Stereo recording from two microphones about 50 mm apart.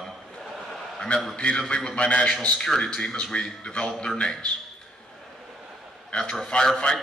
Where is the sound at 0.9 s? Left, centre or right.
Centre.